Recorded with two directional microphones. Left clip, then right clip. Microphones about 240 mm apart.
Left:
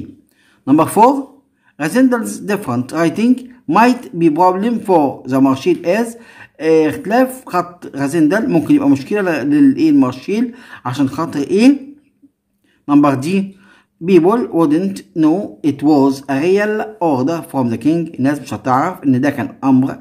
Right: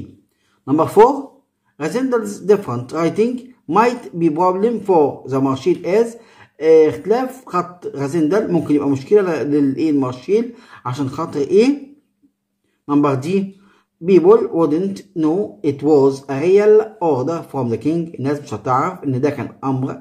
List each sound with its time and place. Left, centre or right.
0.7 s speech: left
12.8 s speech: left